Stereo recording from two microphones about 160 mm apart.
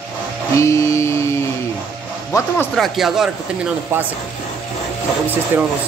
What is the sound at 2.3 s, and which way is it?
Speech, 20° left (ahead or behind).